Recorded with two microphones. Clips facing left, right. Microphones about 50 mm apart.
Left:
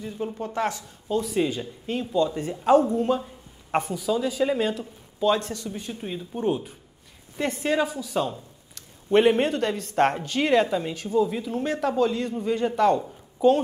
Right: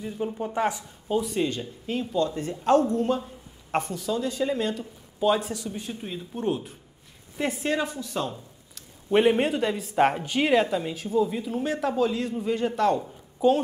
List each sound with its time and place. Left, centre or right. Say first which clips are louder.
0.0 s speech: right 1 dB; centre
1.2 s a man's voice: left 2 dB; centre
4.7 s a man's voice: left 1 dB; centre